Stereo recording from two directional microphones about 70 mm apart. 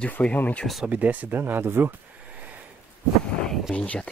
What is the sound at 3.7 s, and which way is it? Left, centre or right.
Speech, centre.